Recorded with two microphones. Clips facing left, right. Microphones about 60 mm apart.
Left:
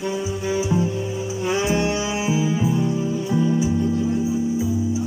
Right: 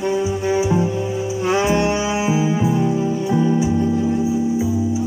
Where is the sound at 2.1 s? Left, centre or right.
Right.